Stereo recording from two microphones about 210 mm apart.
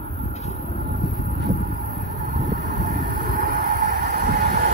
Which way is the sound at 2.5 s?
45° right (ahead or behind).